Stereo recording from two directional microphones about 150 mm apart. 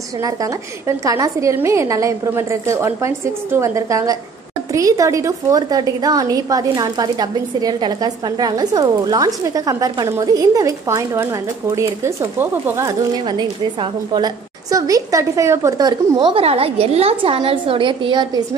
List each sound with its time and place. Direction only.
0.2 s speech: 20° right (ahead or behind)